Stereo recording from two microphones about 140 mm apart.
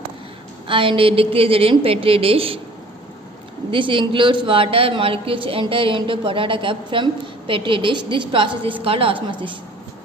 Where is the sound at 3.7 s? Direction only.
35° right (ahead or behind).